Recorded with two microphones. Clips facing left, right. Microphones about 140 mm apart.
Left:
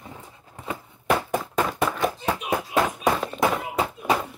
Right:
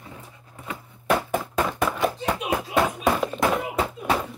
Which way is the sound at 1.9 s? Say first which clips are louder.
Right 1 dB; centre (ahead or behind).